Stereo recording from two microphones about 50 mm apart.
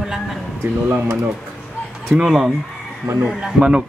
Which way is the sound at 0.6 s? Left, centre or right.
Right.